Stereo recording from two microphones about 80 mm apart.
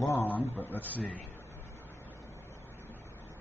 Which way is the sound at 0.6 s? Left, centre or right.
Left.